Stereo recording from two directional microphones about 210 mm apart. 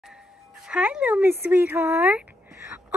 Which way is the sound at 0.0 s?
5° right (ahead or behind).